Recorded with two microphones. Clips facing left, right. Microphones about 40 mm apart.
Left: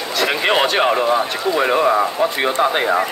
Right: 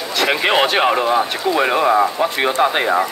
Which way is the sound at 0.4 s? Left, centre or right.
Centre.